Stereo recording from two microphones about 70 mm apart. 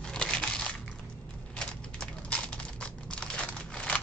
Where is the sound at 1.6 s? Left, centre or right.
Centre.